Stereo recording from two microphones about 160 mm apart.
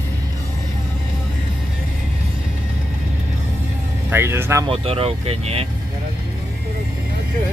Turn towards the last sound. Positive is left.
turn(degrees=-35)  # may be behind; listen again after turning